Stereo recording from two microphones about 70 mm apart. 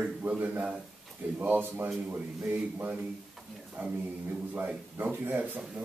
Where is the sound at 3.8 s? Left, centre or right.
Right.